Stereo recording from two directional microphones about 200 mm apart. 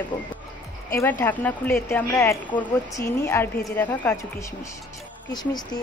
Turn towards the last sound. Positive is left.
turn(degrees=20)  # may be behind; listen again after turning